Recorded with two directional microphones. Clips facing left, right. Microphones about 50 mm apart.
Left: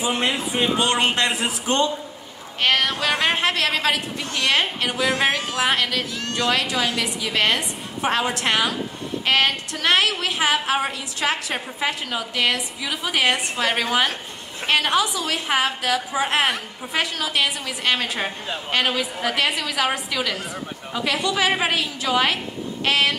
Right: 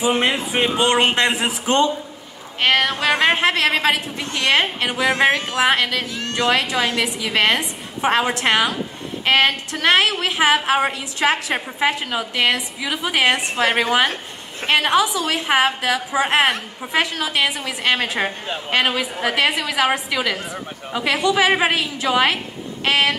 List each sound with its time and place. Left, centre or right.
0.0 s a woman's voice: right
16.2 s a woman's voice: right